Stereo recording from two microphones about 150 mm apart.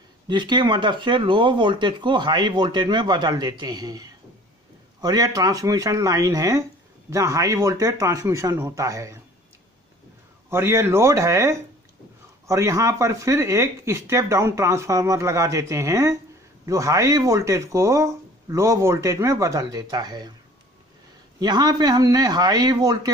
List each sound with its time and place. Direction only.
0.3 s speech: 30° right (ahead or behind)
10.5 s speech: 15° right (ahead or behind)
21.4 s speech: 30° right (ahead or behind)